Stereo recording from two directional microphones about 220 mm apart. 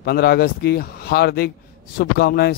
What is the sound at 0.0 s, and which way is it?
Speech, 45° left (ahead or behind).